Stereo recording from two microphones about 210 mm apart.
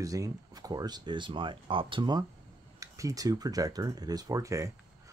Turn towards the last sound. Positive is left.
turn(degrees=-15)  # may be behind; listen again after turning